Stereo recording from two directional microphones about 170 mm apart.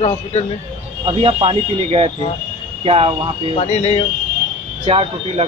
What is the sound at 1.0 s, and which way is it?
Speech, 30° right (ahead or behind).